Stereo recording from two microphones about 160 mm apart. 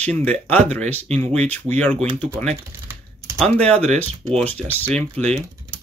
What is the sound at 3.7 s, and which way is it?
Speech, 45° right (ahead or behind).